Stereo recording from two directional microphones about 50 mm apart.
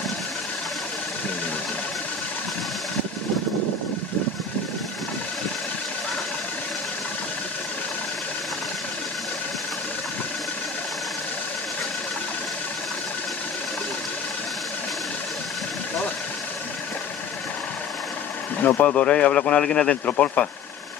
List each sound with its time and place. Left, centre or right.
18.6 s a sound: left
18.9 s a man's voice: left
20.1 s a man's voice: left